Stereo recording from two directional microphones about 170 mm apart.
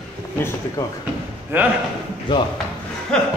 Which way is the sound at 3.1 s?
5° left (ahead or behind).